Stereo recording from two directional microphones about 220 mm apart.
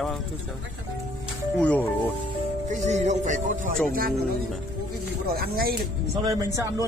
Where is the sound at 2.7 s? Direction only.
35° right (ahead or behind).